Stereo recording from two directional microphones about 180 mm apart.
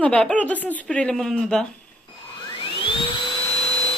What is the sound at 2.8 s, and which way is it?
Vacuum cleaner, 25° left (ahead or behind).